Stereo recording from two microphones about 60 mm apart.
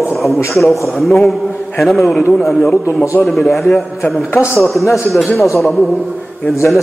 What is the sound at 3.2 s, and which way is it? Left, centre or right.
Speech, left.